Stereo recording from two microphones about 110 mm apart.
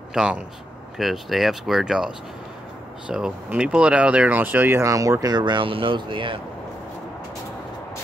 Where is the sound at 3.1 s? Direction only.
10° right (ahead or behind); by 6.3 s 50° right (ahead or behind).